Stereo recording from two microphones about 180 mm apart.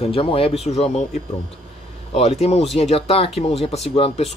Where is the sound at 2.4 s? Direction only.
35° left (ahead or behind).